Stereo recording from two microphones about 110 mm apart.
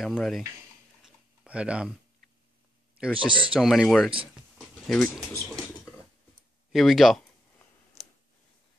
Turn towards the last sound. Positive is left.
turn(degrees=0)  # may be behind; listen again after turning